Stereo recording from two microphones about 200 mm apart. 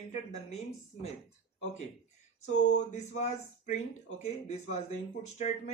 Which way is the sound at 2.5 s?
35° left (ahead or behind).